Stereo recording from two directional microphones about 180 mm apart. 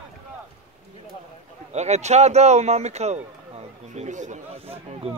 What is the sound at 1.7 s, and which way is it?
A man's voice, 40° right (ahead or behind).